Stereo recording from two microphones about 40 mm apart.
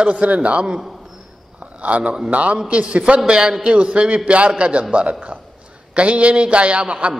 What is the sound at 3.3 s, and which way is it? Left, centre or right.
A man's voice, centre.